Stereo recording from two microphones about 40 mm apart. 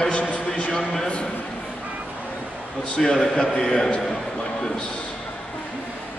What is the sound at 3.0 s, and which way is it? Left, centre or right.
Speech, centre.